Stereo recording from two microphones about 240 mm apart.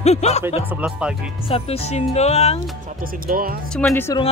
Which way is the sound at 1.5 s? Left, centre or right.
Left.